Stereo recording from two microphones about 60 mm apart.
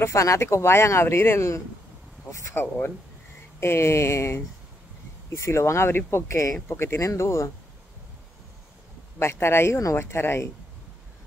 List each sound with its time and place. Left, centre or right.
0.0 s speech: left
2.5 s speech: left
6.7 s speech: left
7.0 s speech: left
9.2 s speech: left